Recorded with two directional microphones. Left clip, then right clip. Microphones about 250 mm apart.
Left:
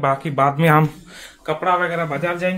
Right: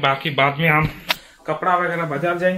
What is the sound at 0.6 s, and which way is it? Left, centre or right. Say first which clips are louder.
Speech: left 2 dB; left.